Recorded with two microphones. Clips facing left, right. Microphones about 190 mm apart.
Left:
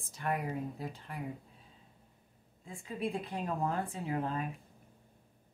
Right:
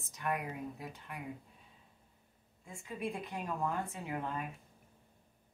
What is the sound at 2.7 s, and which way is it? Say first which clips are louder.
Speech: left 3 dB; 30° left (ahead or behind).